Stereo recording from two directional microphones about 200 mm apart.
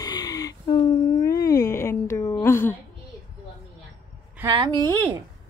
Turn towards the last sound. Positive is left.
turn(degrees=-20)  # may be behind; listen again after turning